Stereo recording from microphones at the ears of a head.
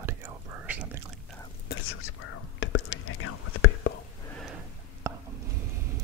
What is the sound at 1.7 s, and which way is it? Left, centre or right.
Whispering, left.